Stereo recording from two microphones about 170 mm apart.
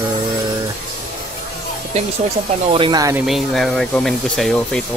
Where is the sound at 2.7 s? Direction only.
25° right (ahead or behind).